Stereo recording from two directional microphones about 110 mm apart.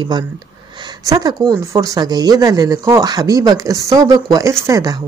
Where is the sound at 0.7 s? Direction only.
40° right (ahead or behind).